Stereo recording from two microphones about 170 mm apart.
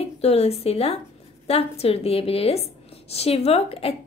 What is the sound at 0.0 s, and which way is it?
A woman's voice, 35° left (ahead or behind).